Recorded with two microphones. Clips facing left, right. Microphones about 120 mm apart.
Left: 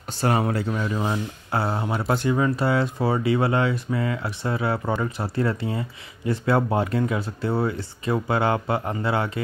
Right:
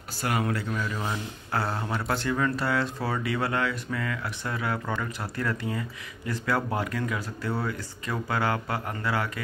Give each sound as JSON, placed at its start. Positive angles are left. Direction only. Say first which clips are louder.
{"t": 0.2, "sound": "speech", "louder": "left 6 dB", "side_deg": 30}